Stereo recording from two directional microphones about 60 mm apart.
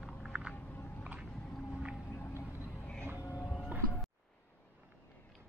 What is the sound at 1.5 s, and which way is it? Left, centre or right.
Whale vocalization, centre.